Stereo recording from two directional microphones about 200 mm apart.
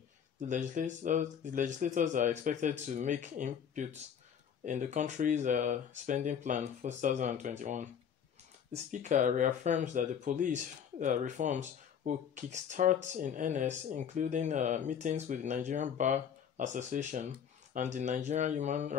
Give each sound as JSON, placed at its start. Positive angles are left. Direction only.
{"t": 0.4, "sound": "speech", "side_deg": -40}
{"t": 8.9, "sound": "speech", "side_deg": -40}